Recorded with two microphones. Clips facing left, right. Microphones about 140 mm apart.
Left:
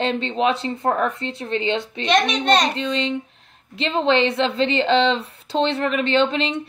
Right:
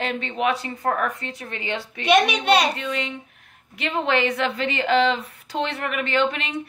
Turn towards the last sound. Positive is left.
turn(degrees=25)  # may be behind; listen again after turning